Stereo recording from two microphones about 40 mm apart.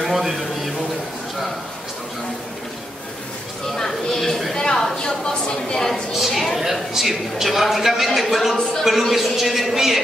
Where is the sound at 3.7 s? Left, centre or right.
Centre.